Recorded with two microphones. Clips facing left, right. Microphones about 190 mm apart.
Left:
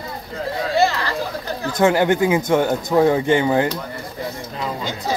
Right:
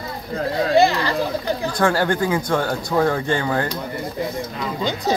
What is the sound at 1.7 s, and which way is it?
Speech, 20° left (ahead or behind).